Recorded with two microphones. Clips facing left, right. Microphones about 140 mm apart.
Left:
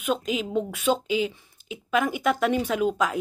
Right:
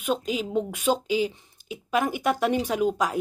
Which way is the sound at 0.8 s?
40° right (ahead or behind).